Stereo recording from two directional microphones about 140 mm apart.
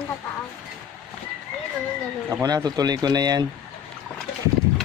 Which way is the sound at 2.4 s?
30° right (ahead or behind).